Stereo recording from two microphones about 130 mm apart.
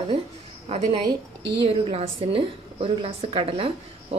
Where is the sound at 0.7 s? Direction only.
50° right (ahead or behind).